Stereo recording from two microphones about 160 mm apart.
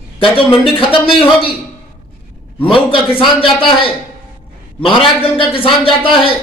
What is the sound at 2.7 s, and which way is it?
A man's voice, 35° left (ahead or behind).